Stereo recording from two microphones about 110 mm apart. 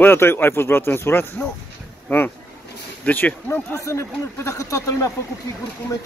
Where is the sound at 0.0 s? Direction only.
20° left (ahead or behind).